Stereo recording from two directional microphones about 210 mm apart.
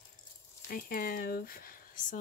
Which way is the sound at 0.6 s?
40° left (ahead or behind).